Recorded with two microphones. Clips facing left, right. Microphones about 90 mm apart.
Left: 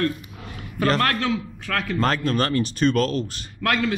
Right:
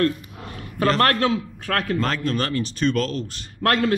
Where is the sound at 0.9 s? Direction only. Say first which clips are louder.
Right 3 dB; 45° right (ahead or behind).